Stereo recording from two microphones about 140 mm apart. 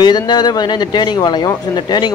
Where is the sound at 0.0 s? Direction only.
30° left (ahead or behind).